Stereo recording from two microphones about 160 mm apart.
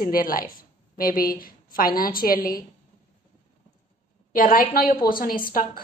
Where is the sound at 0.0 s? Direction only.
60° left (ahead or behind).